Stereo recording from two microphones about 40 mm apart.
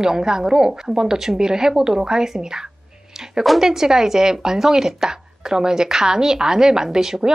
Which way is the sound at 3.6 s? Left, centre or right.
Centre.